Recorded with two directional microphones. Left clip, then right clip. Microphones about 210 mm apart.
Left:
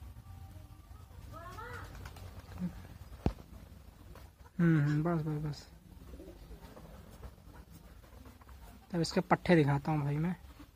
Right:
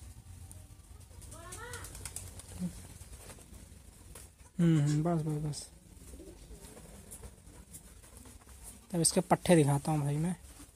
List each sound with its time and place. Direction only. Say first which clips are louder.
4.6 s speech: even; 20° right (ahead or behind)
8.9 s speech: right 2 dB; 25° right (ahead or behind)